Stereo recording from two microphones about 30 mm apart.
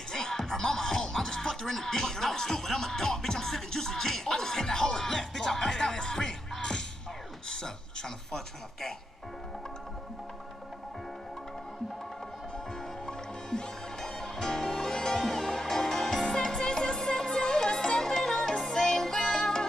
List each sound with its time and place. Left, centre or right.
0.1 s music: centre
7.4 s a sound: centre
13.0 s music: left